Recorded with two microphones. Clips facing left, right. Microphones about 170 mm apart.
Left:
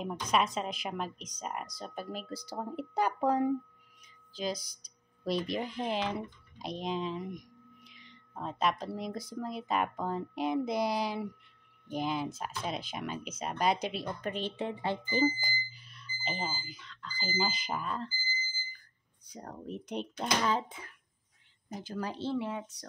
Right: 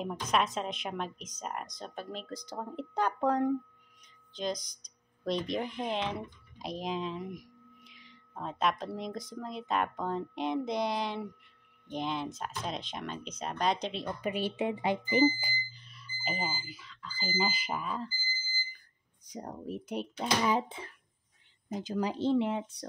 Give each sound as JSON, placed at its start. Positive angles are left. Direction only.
{"t": 0.0, "sound": "speech", "side_deg": 0}
{"t": 14.0, "sound": "speech", "side_deg": -10}
{"t": 15.7, "sound": "speech", "side_deg": 0}
{"t": 19.3, "sound": "speech", "side_deg": -15}
{"t": 20.6, "sound": "speech", "side_deg": -30}
{"t": 21.7, "sound": "speech", "side_deg": -15}